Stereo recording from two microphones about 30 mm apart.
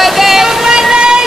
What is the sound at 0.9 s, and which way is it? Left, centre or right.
Train, right.